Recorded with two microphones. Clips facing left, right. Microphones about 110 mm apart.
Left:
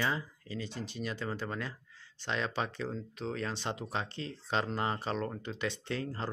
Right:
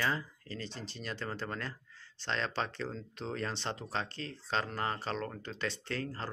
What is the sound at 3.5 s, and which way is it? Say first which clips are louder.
Speech: left 1 dB; 15° left (ahead or behind).